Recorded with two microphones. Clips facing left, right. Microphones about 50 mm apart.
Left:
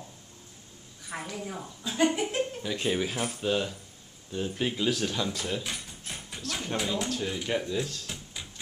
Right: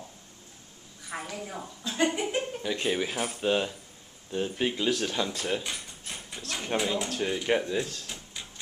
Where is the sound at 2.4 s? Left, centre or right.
Centre.